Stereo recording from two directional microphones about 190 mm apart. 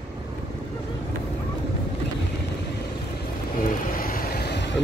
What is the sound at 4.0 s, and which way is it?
Vehicle, 50° left (ahead or behind).